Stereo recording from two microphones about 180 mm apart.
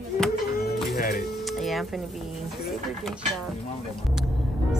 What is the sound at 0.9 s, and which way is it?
Music, 60° left (ahead or behind).